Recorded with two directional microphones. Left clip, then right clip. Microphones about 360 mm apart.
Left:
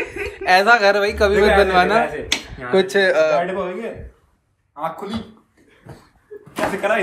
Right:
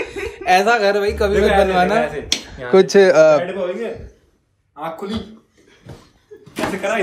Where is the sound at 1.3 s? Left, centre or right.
Centre.